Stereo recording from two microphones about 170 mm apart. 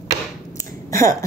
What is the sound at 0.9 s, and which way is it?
Speech, 15° left (ahead or behind).